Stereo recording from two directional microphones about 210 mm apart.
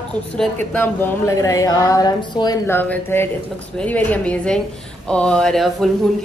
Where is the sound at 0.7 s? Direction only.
10° left (ahead or behind).